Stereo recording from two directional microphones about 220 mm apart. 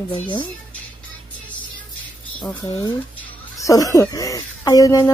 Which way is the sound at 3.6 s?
15° left (ahead or behind).